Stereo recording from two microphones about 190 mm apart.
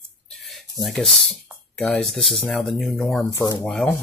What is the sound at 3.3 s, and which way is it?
Speech, 15° left (ahead or behind).